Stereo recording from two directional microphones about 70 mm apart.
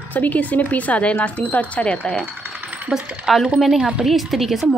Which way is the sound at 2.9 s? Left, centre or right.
Centre.